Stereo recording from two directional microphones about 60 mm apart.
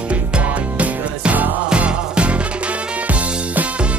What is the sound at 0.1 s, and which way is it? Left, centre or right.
Music, right.